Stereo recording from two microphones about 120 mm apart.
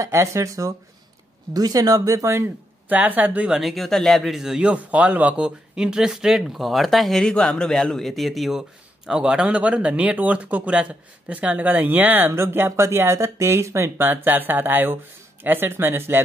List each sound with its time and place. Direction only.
0.0 s speech: 25° right (ahead or behind)